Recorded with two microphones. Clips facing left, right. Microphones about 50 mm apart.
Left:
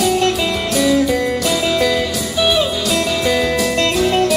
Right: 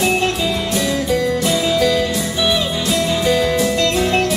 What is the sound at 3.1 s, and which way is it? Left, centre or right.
Music, right.